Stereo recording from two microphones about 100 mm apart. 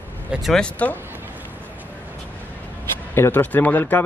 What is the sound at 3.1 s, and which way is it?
Speech, 20° left (ahead or behind).